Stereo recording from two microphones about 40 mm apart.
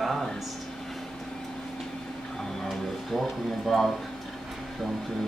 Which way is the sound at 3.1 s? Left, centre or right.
Centre.